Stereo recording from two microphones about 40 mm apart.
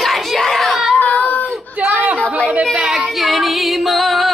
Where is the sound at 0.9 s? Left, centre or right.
Left.